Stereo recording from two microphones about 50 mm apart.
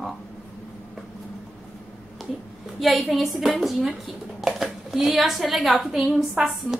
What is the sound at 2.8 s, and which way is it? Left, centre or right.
A woman's voice, centre.